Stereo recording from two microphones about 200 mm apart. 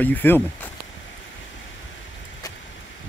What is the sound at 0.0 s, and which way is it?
Speech, 10° left (ahead or behind).